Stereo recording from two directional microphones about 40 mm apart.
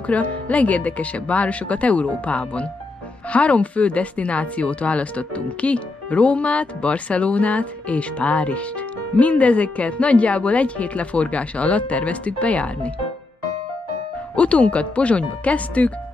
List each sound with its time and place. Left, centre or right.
0.0 s speech: left
14.3 s speech: left